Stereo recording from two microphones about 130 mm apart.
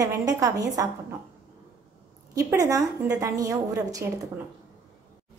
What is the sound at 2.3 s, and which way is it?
A woman's voice, 25° right (ahead or behind).